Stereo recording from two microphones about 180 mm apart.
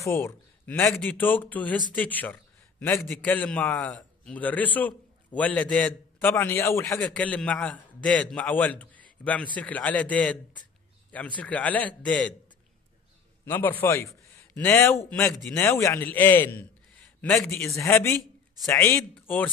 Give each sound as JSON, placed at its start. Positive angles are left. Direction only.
{"t": 0.0, "sound": "a man's voice", "side_deg": 15}
{"t": 13.5, "sound": "a man's voice", "side_deg": 10}